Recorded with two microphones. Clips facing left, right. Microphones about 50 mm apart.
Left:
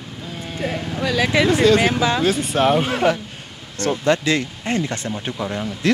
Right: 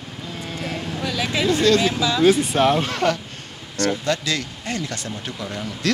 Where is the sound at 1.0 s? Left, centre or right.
Left.